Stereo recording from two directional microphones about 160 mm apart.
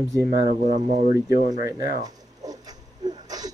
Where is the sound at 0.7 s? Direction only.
50° right (ahead or behind).